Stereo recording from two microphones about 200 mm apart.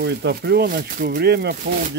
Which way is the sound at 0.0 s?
55° right (ahead or behind).